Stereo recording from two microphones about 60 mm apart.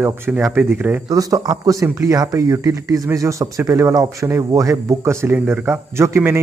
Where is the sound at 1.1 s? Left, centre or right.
Right.